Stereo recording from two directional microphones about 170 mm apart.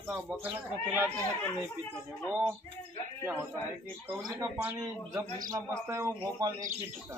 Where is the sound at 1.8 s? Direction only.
10° left (ahead or behind).